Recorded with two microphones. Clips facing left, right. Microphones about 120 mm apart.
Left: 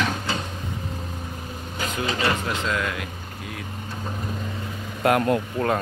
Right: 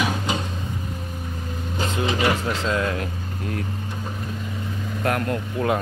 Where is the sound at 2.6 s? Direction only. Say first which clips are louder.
Right 3 dB; 30° right (ahead or behind).